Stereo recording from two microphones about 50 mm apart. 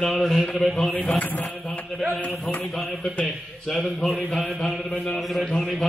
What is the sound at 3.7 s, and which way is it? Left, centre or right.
Speech, centre.